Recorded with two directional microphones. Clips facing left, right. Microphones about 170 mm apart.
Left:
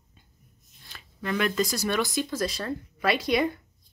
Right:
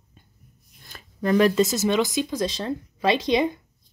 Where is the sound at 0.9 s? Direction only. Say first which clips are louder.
Right 9 dB; 40° right (ahead or behind); by 3.6 s 20° right (ahead or behind).